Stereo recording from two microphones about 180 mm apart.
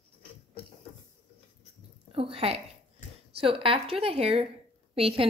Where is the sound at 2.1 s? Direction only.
30° right (ahead or behind).